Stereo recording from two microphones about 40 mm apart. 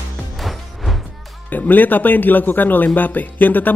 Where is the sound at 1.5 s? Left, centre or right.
Left.